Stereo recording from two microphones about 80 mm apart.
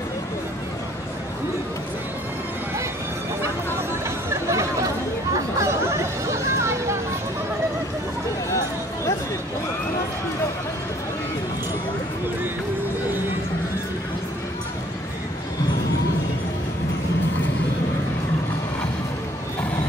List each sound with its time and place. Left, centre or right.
4.3 s chatter: right